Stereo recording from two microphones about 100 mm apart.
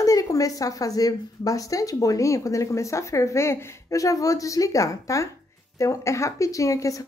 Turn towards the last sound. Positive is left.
turn(degrees=35)  # may be behind; listen again after turning